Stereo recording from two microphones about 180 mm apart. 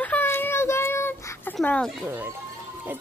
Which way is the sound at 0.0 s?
10° left (ahead or behind).